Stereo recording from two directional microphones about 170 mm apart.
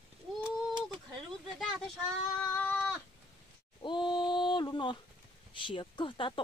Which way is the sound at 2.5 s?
10° left (ahead or behind).